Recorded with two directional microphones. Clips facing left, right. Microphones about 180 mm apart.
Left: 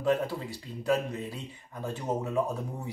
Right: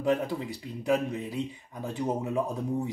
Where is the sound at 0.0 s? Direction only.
15° right (ahead or behind).